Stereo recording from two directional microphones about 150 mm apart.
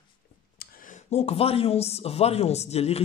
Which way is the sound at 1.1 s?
40° left (ahead or behind).